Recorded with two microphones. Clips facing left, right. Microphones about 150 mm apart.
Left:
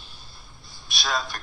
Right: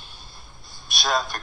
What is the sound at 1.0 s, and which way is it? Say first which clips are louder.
Speech: right 4 dB; 50° right (ahead or behind).